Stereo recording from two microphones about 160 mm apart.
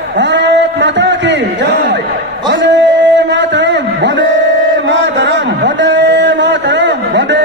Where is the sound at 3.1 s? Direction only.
90° right.